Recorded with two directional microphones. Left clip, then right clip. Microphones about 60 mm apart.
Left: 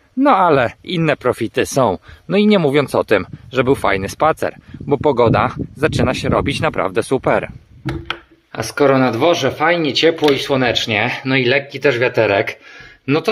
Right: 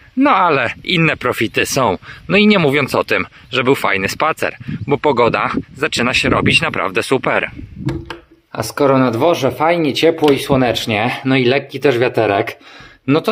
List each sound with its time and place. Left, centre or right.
0.2 s speech: centre
0.8 s speech: centre
1.5 s speech: left
2.2 s speech: centre
4.9 s speech: centre
8.5 s speech: centre
9.8 s speech: centre